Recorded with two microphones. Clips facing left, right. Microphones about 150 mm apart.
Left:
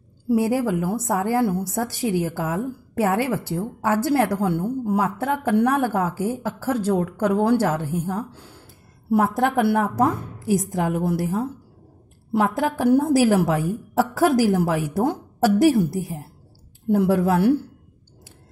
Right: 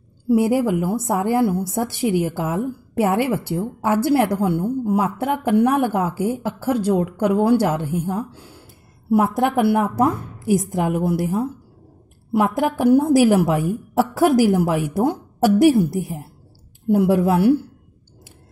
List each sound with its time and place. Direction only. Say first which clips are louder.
0.3 s a woman's voice: right 3 dB; 15° right (ahead or behind)
12.3 s a woman's voice: right 2 dB; 15° right (ahead or behind)